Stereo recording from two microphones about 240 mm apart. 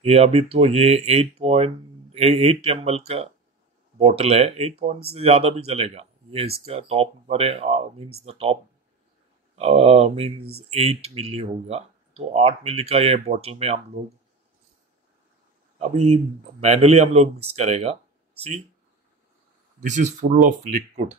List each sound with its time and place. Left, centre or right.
0.0 s speech: right
9.6 s speech: right
15.8 s speech: right
19.8 s speech: right